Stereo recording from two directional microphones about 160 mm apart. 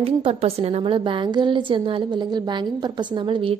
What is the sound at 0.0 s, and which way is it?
A woman's voice, 40° right (ahead or behind).